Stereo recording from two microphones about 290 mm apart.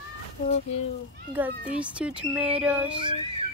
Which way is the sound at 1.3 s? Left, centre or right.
Centre.